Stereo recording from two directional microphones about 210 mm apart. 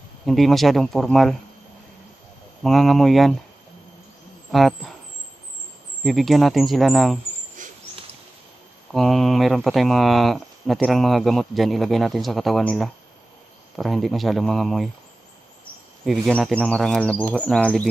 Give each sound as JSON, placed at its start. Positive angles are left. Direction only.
{"t": 0.2, "sound": "speech", "side_deg": 0}
{"t": 2.6, "sound": "speech", "side_deg": 0}
{"t": 4.5, "sound": "speech", "side_deg": 0}
{"t": 6.0, "sound": "speech", "side_deg": 0}
{"t": 7.5, "sound": "a sound", "side_deg": -40}
{"t": 8.9, "sound": "speech", "side_deg": 0}
{"t": 16.1, "sound": "speech", "side_deg": 0}